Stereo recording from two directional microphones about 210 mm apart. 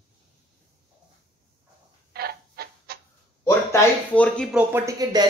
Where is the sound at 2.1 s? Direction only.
50° right (ahead or behind).